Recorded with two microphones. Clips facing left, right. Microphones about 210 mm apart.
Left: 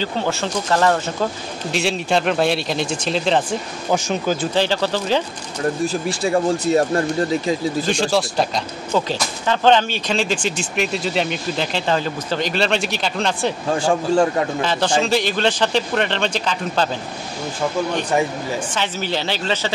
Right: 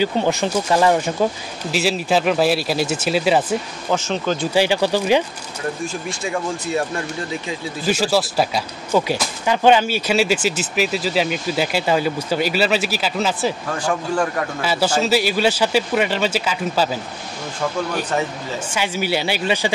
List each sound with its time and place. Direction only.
0.0 s speech: 15° right (ahead or behind)
1.7 s speech: centre (ahead or behind)
3.9 s speech: 10° left (ahead or behind)
4.6 s speech: 10° right (ahead or behind)
5.9 s speech: 35° left (ahead or behind)
7.8 s speech: 5° right (ahead or behind)
13.7 s speech: 25° left (ahead or behind)
14.6 s speech: 5° right (ahead or behind)
18.8 s speech: 10° right (ahead or behind)